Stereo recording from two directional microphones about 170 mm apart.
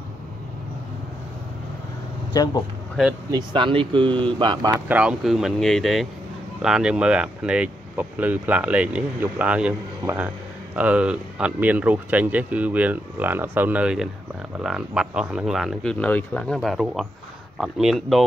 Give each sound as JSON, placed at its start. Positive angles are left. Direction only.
{"t": 2.3, "sound": "speech", "side_deg": 25}
{"t": 3.3, "sound": "speech", "side_deg": -25}
{"t": 4.8, "sound": "speech", "side_deg": -5}